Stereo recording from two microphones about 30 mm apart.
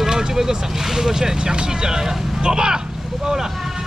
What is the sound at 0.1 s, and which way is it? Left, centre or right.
Speech, right.